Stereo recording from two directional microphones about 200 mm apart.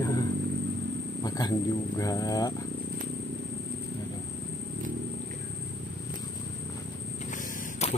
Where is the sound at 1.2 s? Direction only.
20° left (ahead or behind).